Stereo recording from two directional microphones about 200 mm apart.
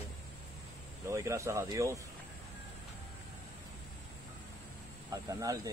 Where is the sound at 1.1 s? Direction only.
15° right (ahead or behind).